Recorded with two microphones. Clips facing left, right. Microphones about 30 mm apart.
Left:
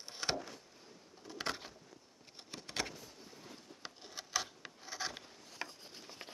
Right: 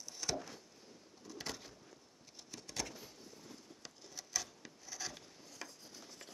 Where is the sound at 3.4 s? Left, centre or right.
Left.